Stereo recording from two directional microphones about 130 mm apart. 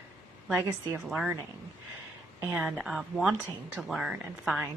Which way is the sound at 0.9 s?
5° right (ahead or behind).